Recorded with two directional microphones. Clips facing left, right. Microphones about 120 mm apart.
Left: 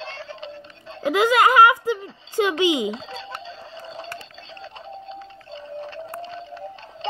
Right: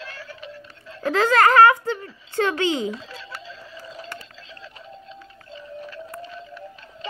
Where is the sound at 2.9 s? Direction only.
25° left (ahead or behind).